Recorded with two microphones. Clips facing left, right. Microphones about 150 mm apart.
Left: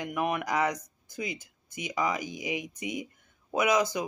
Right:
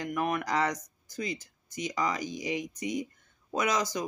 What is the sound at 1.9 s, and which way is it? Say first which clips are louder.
Speech: left 2 dB; 10° left (ahead or behind).